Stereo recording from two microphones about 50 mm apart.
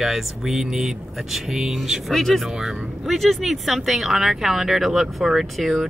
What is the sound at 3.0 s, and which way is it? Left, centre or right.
Speech, centre.